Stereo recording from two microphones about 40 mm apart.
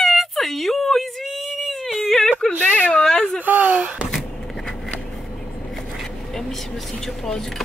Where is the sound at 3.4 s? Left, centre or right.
Right.